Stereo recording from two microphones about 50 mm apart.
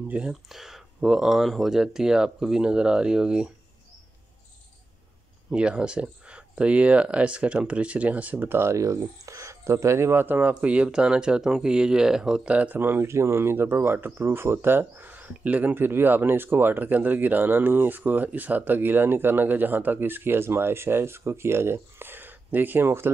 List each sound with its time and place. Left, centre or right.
0.3 s speech: centre
5.5 s speech: centre
8.5 s speech: right
8.7 s speech: right
10.2 s speech: right
10.5 s speech: right
12.4 s speech: right
13.0 s speech: right